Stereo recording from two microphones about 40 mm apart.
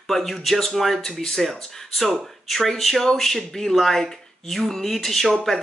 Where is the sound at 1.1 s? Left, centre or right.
Centre.